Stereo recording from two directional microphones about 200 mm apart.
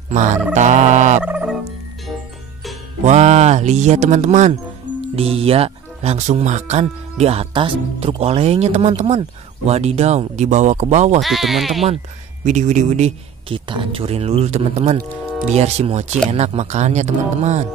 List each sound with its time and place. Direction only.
0.1 s a sound: 35° right (ahead or behind)
1.2 s fowl: 5° right (ahead or behind)
3.1 s music: 35° right (ahead or behind)
5.1 s speech: 30° right (ahead or behind)
11.1 s speech: centre (ahead or behind)
12.4 s speech: 35° right (ahead or behind)